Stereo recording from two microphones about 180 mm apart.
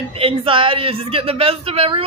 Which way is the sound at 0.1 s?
30° right (ahead or behind).